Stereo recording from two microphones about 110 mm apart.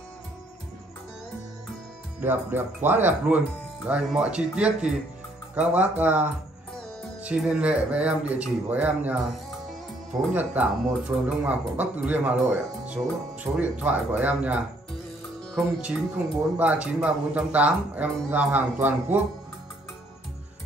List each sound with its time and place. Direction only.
2.1 s speech: 20° right (ahead or behind)
7.2 s speech: 10° right (ahead or behind)
10.3 s speech: 15° right (ahead or behind)
16.5 s speech: 10° right (ahead or behind)